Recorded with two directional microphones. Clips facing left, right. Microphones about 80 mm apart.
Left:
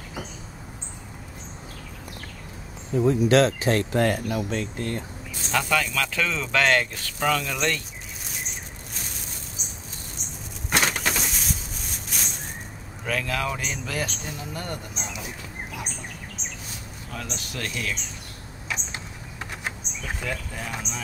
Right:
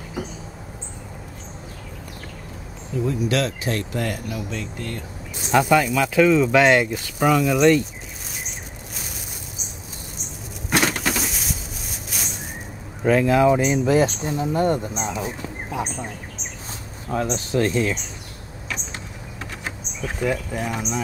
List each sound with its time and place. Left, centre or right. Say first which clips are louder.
3.1 s speech: left 5 dB; left
5.5 s speech: right 7 dB; centre
10.7 s a sound: right 3 dB; centre
13.0 s speech: right 11 dB; right
17.1 s speech: right 13 dB; right
20.2 s speech: right 11 dB; centre